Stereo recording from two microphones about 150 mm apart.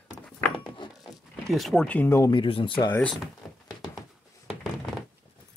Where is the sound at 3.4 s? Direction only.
10° left (ahead or behind).